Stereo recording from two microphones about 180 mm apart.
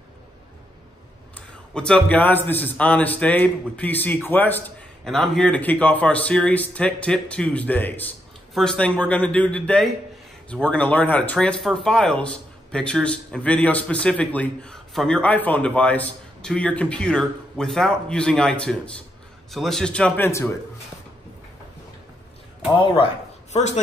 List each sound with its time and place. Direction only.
1.3 s a man's voice: 5° left (ahead or behind)
22.8 s a man's voice: 30° left (ahead or behind)
23.5 s speech: 40° left (ahead or behind)